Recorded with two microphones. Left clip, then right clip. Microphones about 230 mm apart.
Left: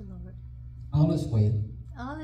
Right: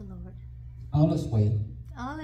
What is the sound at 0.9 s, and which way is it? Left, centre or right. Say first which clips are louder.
Speech: right 2 dB; left.